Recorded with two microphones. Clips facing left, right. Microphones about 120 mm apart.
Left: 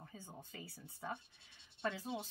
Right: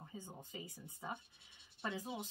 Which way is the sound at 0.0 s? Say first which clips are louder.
Right 3 dB; 20° right (ahead or behind).